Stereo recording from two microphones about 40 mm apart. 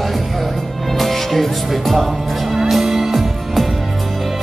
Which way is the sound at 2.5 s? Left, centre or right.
Centre.